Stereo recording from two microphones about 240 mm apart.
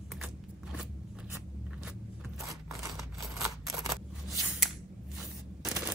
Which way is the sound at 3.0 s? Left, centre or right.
Centre.